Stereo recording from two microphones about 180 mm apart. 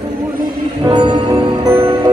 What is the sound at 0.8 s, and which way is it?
Music, 25° right (ahead or behind).